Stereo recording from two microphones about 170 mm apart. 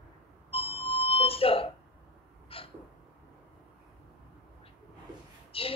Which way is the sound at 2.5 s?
35° left (ahead or behind).